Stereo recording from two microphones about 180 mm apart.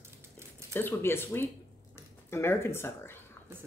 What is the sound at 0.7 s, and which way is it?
Speech, 10° left (ahead or behind).